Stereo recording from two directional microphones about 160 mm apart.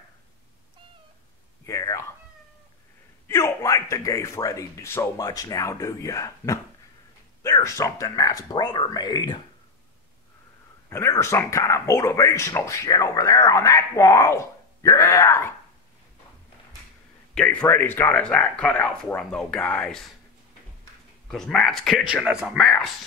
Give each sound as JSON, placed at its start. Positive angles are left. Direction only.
{"t": 1.7, "sound": "cat", "side_deg": 20}
{"t": 3.3, "sound": "speech", "side_deg": 15}
{"t": 10.9, "sound": "speech", "side_deg": 15}
{"t": 17.3, "sound": "speech", "side_deg": 5}
{"t": 21.3, "sound": "speech", "side_deg": 5}